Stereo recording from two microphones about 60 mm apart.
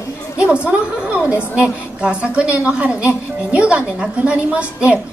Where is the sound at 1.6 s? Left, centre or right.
Centre.